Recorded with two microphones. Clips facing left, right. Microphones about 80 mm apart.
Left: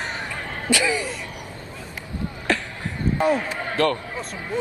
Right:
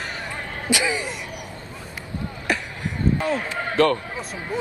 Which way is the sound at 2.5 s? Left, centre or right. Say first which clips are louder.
Left 1 dB; centre.